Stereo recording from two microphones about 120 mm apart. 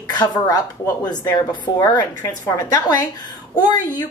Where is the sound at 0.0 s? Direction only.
35° left (ahead or behind).